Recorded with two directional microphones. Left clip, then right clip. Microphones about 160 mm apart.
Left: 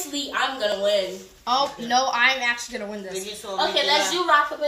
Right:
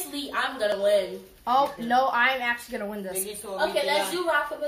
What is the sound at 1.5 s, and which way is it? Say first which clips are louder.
Speech: left 1 dB; 40° right (ahead or behind).